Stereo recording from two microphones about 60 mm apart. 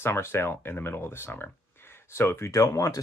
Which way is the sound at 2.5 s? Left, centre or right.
Left.